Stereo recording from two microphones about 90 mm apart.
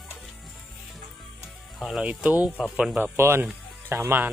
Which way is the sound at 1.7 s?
5° right (ahead or behind).